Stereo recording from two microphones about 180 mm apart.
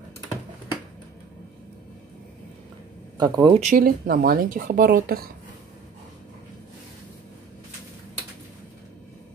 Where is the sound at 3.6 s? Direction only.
50° right (ahead or behind).